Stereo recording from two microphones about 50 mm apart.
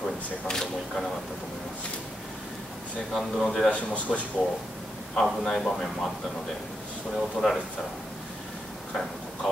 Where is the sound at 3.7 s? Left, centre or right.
Left.